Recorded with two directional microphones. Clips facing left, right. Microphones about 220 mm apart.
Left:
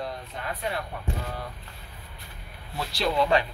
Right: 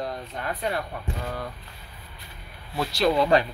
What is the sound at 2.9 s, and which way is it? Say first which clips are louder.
Speech: right 3 dB; 45° right (ahead or behind).